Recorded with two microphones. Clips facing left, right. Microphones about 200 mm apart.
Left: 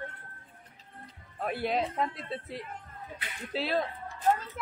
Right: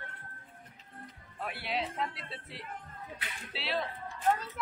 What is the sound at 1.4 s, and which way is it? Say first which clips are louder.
A man's voice: left 6 dB; 45° left (ahead or behind).